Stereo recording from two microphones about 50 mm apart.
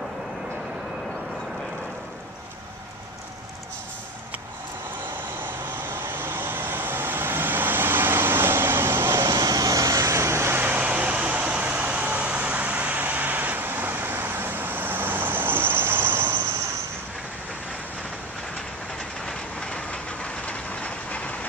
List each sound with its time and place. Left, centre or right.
5.9 s vehicle: right
9.8 s vehicle: right
10.6 s vehicle: right
19.2 s train: centre